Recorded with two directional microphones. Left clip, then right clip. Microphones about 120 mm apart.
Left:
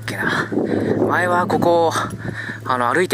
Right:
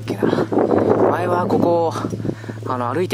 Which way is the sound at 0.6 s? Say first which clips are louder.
Right 4 dB; 45° right (ahead or behind).